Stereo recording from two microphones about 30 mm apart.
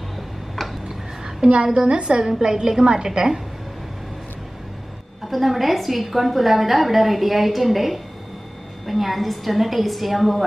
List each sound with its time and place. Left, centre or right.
1.5 s a woman's voice: right
2.2 s a woman's voice: centre
5.3 s a woman's voice: centre